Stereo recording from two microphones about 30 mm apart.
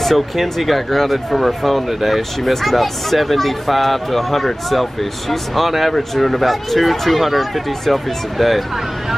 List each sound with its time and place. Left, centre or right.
0.0 s speech: centre